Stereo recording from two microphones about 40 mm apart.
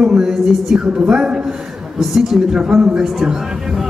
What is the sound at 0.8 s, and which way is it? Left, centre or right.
Speech, right.